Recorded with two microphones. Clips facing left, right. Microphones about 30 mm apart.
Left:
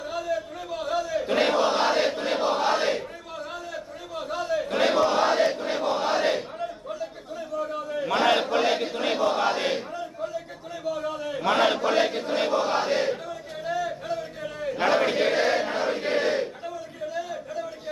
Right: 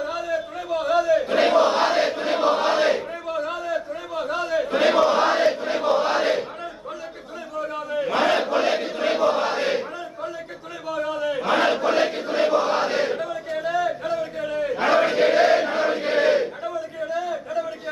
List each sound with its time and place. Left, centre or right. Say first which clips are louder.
0.0 s battle cry: right 3 dB; centre
4.7 s chant: right 4 dB; centre
5.8 s crowd: right 4 dB; centre
7.6 s battle cry: right 5 dB; centre
10.9 s a sound: right 4 dB; centre
12.4 s crowd: right 4 dB; centre
14.8 s battle cry: right 3 dB; centre